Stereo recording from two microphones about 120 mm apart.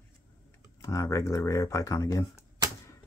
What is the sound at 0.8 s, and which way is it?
Speech, 25° left (ahead or behind).